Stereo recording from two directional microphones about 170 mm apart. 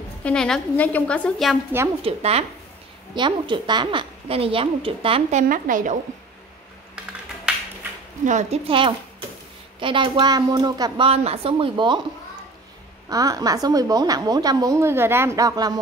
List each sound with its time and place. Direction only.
0.2 s a woman's voice: 5° left (ahead or behind)
2.0 s a woman's voice: 35° right (ahead or behind)
5.5 s a woman's voice: 50° right (ahead or behind)
8.3 s a woman's voice: 45° right (ahead or behind)
8.6 s a woman's voice: 30° right (ahead or behind)
11.1 s a woman's voice: 35° right (ahead or behind)
13.1 s a woman's voice: 20° right (ahead or behind)